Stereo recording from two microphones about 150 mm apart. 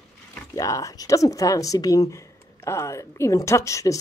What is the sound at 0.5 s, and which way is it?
Speech, 20° left (ahead or behind).